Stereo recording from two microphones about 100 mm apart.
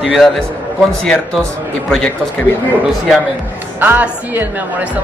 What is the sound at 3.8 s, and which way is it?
Speech, 20° right (ahead or behind).